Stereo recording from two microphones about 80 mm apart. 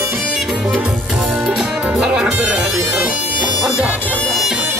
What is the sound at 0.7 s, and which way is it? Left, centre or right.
Speech, centre.